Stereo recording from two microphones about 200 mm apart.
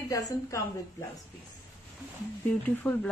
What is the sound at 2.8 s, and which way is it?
Speech, 10° left (ahead or behind).